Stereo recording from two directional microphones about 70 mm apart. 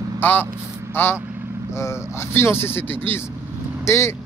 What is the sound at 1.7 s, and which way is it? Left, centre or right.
Speech, left.